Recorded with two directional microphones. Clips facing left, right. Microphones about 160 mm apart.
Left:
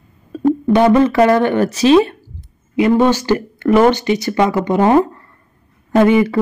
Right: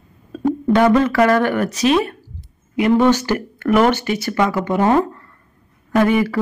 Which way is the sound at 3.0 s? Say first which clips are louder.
Left 2 dB; 15° left (ahead or behind).